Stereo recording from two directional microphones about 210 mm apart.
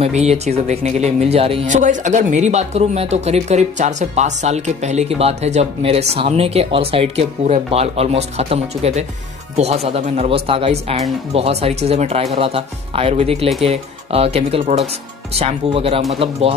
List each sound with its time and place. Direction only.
0.0 s speech: 30° right (ahead or behind)